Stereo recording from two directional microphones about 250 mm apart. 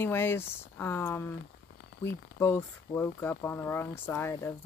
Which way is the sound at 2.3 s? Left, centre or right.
Centre.